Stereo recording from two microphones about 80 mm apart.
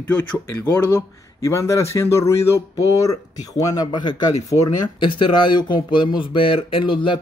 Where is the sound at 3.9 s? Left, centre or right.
Left.